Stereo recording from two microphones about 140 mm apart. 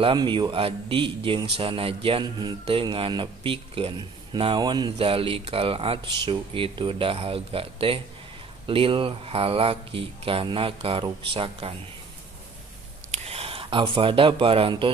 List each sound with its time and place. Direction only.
0.0 s a man's voice: 35° right (ahead or behind)
13.1 s speech: 45° right (ahead or behind)